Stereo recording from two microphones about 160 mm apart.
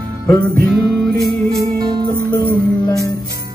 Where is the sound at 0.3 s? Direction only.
5° left (ahead or behind).